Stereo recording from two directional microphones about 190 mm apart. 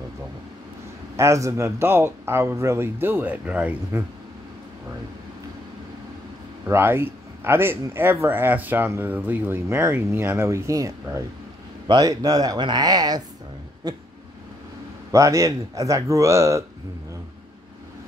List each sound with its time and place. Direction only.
1.1 s speech: 15° right (ahead or behind)
6.7 s speech: 10° right (ahead or behind)
15.0 s speech: 15° right (ahead or behind)